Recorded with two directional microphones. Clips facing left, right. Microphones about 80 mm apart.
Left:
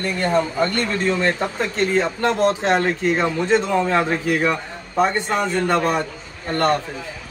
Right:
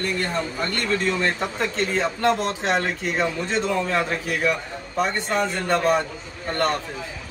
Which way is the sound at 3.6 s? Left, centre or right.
Centre.